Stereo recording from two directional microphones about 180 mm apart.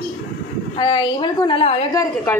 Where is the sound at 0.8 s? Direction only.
25° left (ahead or behind).